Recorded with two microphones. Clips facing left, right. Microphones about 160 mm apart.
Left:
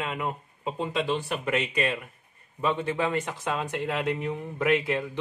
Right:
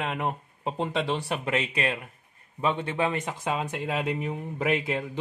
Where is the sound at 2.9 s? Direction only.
20° right (ahead or behind).